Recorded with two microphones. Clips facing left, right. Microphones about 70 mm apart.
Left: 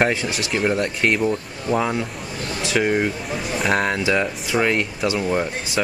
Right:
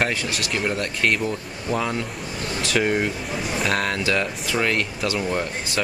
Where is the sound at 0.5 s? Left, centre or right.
Centre.